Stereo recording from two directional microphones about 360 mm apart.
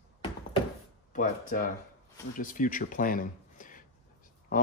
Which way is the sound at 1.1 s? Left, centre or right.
Left.